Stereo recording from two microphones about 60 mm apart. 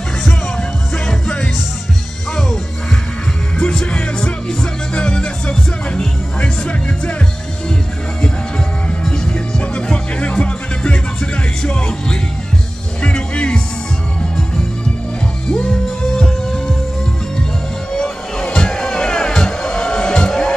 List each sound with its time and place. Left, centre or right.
0.6 s music: centre
3.5 s music: centre
8.2 s music: centre
15.5 s music: centre
17.9 s music: centre